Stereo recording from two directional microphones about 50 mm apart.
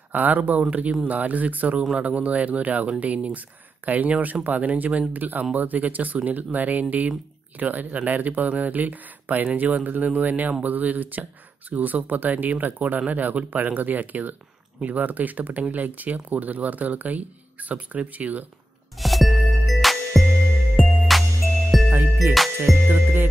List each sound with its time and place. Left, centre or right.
0.1 s speech: right
18.9 s music: centre
22.8 s music: right